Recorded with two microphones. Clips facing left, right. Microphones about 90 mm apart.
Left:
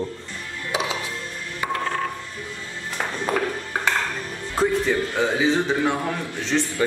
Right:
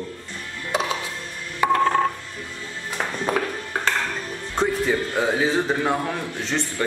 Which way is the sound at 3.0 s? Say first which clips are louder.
Even; 5° right (ahead or behind).